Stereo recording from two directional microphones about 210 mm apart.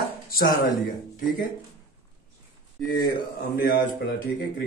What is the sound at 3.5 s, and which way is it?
Speech, 45° left (ahead or behind).